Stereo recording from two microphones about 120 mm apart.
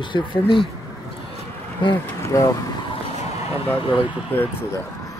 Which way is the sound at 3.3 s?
50° left (ahead or behind).